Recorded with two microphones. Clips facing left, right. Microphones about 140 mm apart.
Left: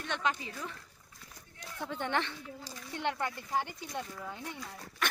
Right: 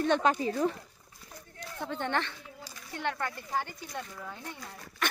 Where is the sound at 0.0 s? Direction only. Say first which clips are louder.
Right 9 dB; 40° right (ahead or behind).